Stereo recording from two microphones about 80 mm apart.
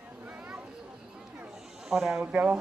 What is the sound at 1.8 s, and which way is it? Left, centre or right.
Speech, centre.